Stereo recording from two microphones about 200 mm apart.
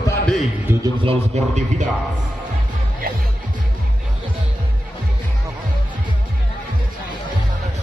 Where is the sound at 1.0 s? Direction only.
35° right (ahead or behind).